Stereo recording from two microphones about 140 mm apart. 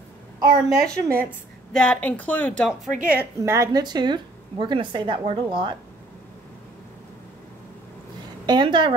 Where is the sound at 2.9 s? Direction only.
70° right (ahead or behind).